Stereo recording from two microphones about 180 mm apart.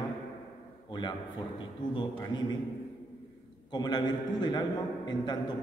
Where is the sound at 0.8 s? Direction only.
25° left (ahead or behind).